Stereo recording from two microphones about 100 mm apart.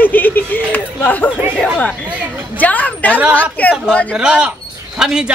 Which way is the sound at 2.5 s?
15° left (ahead or behind).